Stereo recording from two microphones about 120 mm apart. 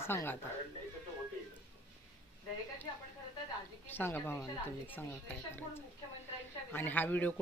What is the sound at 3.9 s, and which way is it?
Speech, 15° left (ahead or behind).